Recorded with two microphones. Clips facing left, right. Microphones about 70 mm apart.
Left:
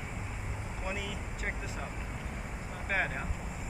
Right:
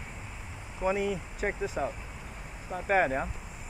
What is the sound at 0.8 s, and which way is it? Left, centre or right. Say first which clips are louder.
Speech: right 11 dB; right.